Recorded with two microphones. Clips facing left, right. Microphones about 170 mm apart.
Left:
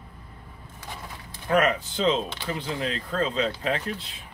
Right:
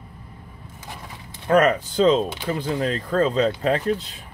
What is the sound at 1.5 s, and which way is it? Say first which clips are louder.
Speech: right 5 dB; 40° right (ahead or behind).